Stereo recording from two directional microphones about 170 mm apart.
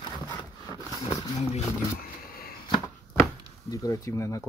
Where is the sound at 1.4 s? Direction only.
40° left (ahead or behind).